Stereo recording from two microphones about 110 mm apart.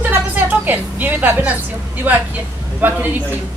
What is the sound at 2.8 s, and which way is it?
Speech, 15° right (ahead or behind).